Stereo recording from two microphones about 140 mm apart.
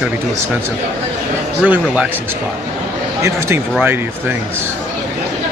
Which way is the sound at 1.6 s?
10° right (ahead or behind).